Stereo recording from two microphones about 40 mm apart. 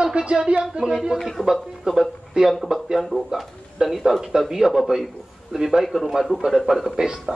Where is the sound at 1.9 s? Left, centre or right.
Centre.